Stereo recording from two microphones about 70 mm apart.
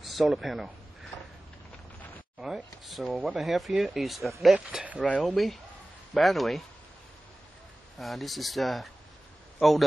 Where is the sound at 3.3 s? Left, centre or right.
Centre.